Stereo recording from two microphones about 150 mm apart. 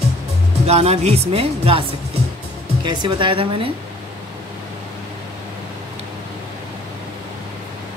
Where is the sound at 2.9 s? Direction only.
30° right (ahead or behind).